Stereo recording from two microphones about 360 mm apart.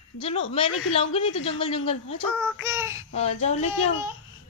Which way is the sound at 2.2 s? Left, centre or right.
Centre.